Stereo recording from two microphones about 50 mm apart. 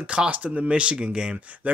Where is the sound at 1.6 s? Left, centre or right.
Right.